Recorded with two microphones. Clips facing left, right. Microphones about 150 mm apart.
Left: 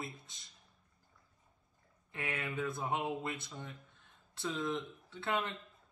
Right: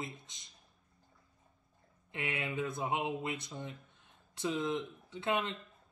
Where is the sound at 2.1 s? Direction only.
20° right (ahead or behind).